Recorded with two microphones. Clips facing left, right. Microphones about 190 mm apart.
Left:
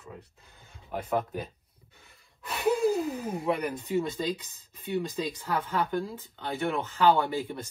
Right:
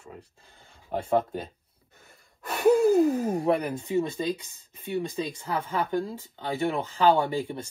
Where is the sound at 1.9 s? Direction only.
50° right (ahead or behind).